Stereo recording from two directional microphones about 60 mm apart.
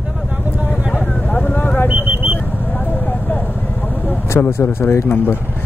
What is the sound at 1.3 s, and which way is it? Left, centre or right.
Vehicle, left.